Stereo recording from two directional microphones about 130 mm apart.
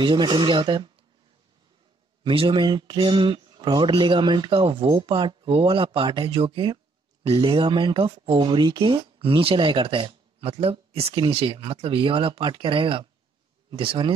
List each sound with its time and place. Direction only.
0.0 s speech: 35° right (ahead or behind)
2.2 s speech: 40° right (ahead or behind)